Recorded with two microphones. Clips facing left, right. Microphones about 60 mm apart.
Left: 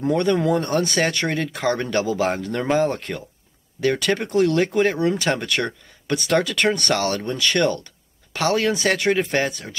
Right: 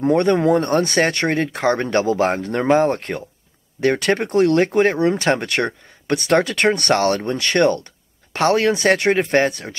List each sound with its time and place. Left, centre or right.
0.0 s speech: right